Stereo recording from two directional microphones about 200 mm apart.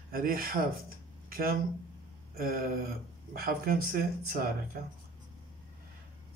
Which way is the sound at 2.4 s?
45° right (ahead or behind).